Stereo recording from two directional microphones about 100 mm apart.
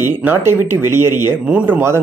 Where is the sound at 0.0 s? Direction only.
20° right (ahead or behind).